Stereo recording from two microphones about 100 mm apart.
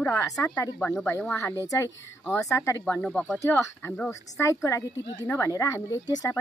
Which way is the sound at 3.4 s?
20° left (ahead or behind).